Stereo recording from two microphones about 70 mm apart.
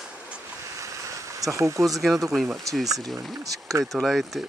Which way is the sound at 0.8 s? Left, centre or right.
Right.